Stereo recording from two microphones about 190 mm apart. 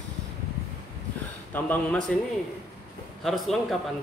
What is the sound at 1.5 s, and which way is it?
Speech, 10° left (ahead or behind).